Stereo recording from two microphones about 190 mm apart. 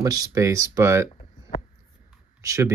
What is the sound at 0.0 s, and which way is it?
Speech, 15° right (ahead or behind).